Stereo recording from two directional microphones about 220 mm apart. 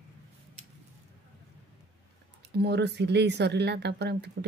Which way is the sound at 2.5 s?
50° right (ahead or behind).